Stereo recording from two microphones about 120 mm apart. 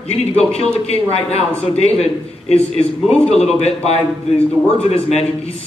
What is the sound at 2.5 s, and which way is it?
A man's voice, 60° left (ahead or behind).